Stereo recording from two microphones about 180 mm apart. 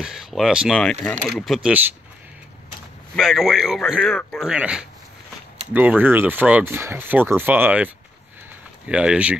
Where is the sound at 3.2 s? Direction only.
Centre (ahead or behind).